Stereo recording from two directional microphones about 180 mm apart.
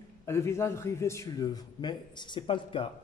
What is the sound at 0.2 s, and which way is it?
A man's voice, 15° left (ahead or behind).